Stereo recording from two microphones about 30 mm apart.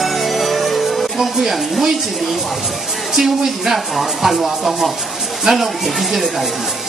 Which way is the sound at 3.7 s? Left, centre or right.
Centre.